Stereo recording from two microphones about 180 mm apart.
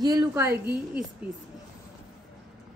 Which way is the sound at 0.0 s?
20° right (ahead or behind).